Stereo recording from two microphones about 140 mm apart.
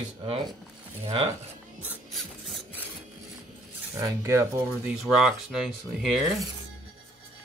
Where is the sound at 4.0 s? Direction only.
20° right (ahead or behind).